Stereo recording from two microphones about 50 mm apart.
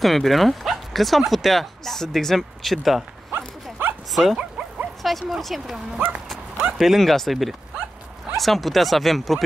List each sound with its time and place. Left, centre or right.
0.0 s speech: centre
4.1 s speech: centre
4.4 s dog: right
5.0 s speech: centre
5.9 s speech: right
6.8 s speech: centre